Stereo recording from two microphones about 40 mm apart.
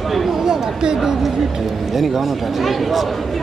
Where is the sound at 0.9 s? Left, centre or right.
Centre.